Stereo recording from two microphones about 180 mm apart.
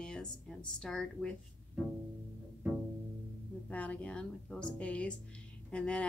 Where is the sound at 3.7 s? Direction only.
10° left (ahead or behind).